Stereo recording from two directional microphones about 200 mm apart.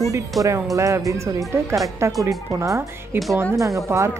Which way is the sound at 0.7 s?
15° right (ahead or behind).